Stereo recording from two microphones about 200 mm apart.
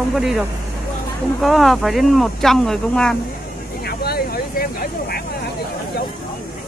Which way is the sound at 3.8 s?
50° left (ahead or behind).